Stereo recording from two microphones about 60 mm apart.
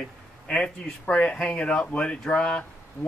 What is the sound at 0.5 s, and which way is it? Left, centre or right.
Speech, centre.